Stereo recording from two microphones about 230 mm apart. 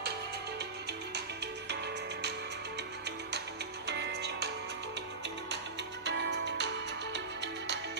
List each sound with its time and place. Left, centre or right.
1.1 s music: right
3.3 s music: right
6.0 s music: right